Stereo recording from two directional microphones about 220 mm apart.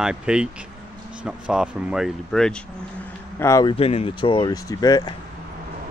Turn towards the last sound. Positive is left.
turn(degrees=20)  # may be behind; listen again after turning